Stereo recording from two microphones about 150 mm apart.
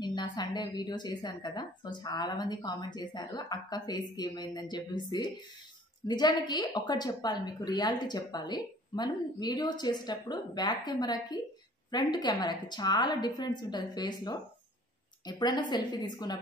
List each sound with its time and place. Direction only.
0.0 s a woman's voice: 30° left (ahead or behind)